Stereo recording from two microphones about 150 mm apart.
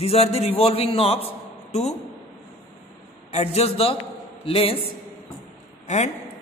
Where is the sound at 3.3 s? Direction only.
45° left (ahead or behind).